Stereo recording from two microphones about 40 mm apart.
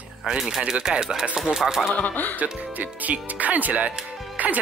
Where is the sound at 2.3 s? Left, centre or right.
Right.